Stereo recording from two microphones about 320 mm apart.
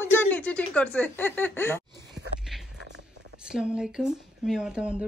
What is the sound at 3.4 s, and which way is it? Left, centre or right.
Speech, centre.